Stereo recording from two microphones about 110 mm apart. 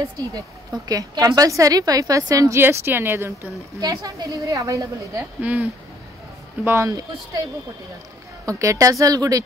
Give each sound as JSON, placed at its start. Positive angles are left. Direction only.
{"t": 0.8, "sound": "a woman's voice", "side_deg": -35}
{"t": 2.6, "sound": "speech", "side_deg": -20}
{"t": 3.8, "sound": "a woman's voice", "side_deg": -35}
{"t": 5.4, "sound": "speech", "side_deg": -15}
{"t": 6.6, "sound": "speech", "side_deg": -25}
{"t": 6.9, "sound": "a woman's voice", "side_deg": -35}
{"t": 8.5, "sound": "a woman's voice", "side_deg": -30}